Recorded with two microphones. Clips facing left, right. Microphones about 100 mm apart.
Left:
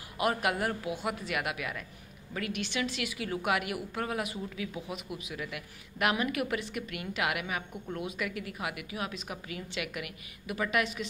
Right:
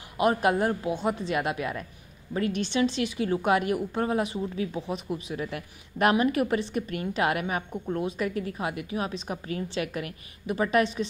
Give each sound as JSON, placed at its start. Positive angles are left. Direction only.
{"t": 0.2, "sound": "a woman's voice", "side_deg": -30}